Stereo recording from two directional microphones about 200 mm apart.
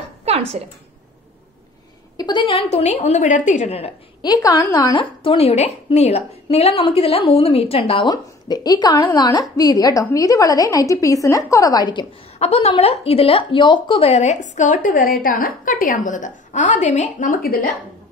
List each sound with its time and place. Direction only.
2.1 s a woman's voice: 20° left (ahead or behind); by 17.6 s 45° left (ahead or behind)